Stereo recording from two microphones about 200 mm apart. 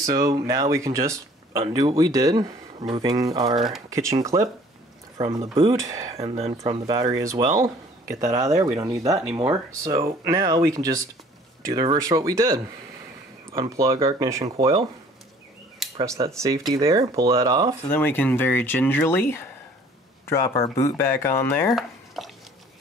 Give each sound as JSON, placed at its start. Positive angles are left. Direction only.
{"t": 0.0, "sound": "speech", "side_deg": -15}
{"t": 6.9, "sound": "speech", "side_deg": -20}
{"t": 15.8, "sound": "cutlery", "side_deg": 0}
{"t": 16.2, "sound": "speech", "side_deg": -20}
{"t": 17.8, "sound": "speech", "side_deg": 10}
{"t": 21.6, "sound": "a sound", "side_deg": 0}